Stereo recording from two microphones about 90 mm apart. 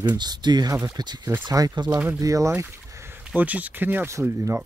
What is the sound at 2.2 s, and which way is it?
Speech, 40° right (ahead or behind).